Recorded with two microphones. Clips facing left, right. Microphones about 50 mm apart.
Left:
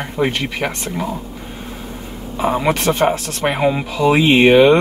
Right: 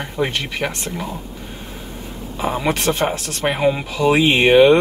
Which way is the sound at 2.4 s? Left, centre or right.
Centre.